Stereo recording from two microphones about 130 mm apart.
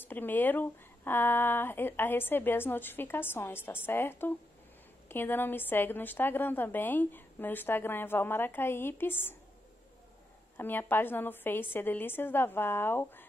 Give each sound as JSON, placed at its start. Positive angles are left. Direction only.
{"t": 0.1, "sound": "a woman's voice", "side_deg": 15}
{"t": 10.6, "sound": "a woman's voice", "side_deg": 15}